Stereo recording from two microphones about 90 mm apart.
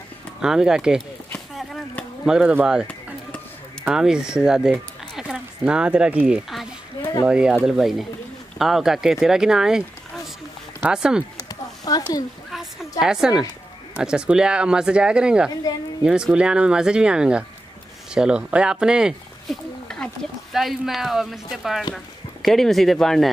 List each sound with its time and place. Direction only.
0.4 s speech: 5° right (ahead or behind)
1.5 s a sound: centre (ahead or behind)
2.2 s speech: 10° right (ahead or behind)
3.9 s speech: 5° right (ahead or behind)
11.4 s a sound: 45° left (ahead or behind)
13.0 s speech: 5° right (ahead or behind)
19.9 s speech: 5° left (ahead or behind)